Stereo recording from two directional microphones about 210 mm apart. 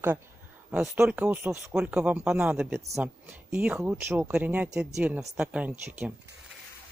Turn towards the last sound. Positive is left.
turn(degrees=-5)  # may be behind; listen again after turning